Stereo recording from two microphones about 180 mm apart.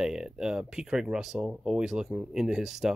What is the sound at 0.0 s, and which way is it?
Speech, 5° right (ahead or behind).